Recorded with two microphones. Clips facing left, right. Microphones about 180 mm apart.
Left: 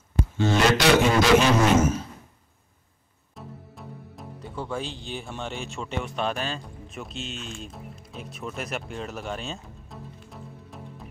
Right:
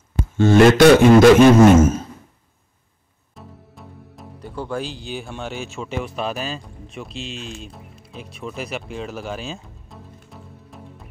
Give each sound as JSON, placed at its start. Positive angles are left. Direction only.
{"t": 0.4, "sound": "a man's voice", "side_deg": -50}
{"t": 3.3, "sound": "speech", "side_deg": 0}
{"t": 7.6, "sound": "music", "side_deg": 0}